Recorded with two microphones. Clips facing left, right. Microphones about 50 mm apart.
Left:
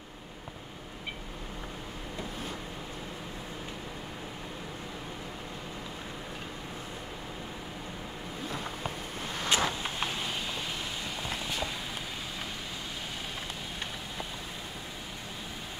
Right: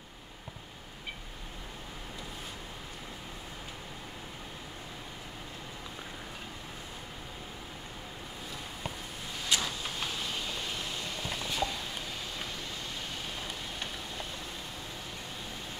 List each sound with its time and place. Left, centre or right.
9.5 s vehicle: left